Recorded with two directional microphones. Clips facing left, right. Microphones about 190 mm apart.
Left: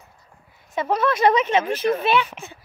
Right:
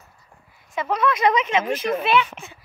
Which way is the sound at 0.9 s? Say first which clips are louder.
Left 2 dB; 30° left (ahead or behind).